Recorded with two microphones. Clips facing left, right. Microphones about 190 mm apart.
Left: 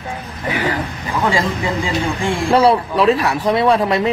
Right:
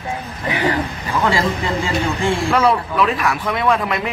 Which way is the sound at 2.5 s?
35° left (ahead or behind).